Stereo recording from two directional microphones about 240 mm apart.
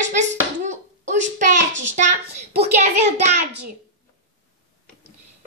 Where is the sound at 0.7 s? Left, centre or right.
Right.